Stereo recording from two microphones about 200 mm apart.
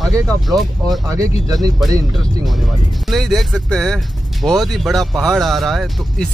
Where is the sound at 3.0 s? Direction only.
Centre (ahead or behind).